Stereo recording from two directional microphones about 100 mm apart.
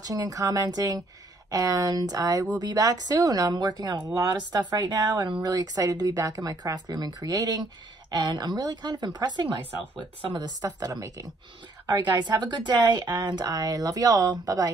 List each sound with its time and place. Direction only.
0.0 s speech: 40° right (ahead or behind)
11.8 s speech: 45° right (ahead or behind)